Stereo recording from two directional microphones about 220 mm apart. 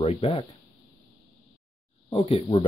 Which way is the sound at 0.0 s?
30° left (ahead or behind).